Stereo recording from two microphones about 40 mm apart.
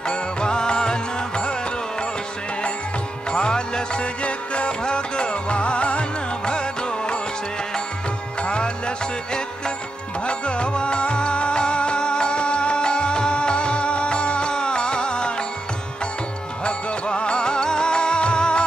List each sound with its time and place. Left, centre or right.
0.1 s music: left
3.3 s music: left
8.4 s music: left
16.6 s music: left